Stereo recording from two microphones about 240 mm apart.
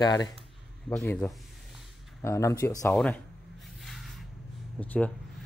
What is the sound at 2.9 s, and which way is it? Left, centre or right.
Speech, centre.